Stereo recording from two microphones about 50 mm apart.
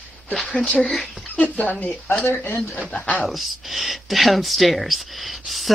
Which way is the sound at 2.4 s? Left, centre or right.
Left.